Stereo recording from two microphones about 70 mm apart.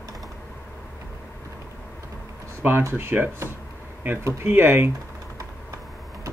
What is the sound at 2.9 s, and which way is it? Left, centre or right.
Speech, right.